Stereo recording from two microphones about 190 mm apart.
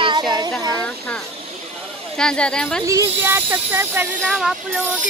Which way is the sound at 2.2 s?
5° left (ahead or behind).